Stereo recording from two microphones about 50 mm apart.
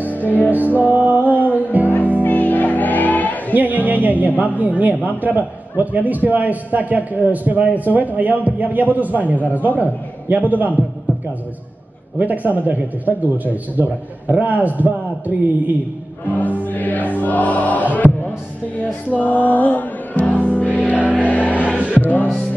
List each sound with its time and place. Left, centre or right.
0.5 s music: right
2.2 s music: left
3.5 s music: right
4.6 s a man's voice: right
12.2 s a man's voice: right
16.3 s music: left
19.1 s music: left
20.8 s music: right
21.3 s music: left